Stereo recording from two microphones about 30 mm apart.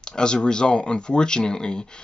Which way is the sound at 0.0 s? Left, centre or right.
Left.